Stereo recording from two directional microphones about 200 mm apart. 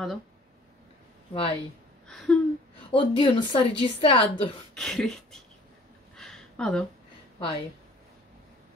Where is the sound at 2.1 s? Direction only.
5° left (ahead or behind).